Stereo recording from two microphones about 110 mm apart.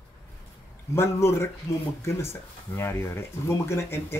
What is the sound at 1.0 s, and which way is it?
Speech, 25° left (ahead or behind).